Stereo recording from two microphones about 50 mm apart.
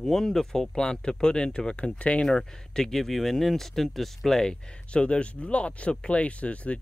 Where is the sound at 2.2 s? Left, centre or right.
Centre.